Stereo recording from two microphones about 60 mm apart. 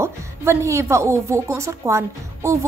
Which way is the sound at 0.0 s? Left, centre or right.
Right.